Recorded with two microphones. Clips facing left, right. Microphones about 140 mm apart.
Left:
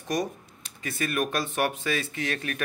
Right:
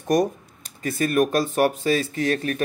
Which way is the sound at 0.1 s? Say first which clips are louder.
Right 8 dB; 50° right (ahead or behind).